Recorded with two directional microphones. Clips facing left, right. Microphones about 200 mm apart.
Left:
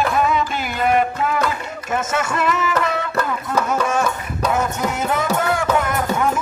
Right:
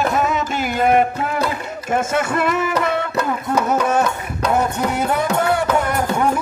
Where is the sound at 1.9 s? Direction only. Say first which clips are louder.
Right 3 dB; 55° right (ahead or behind).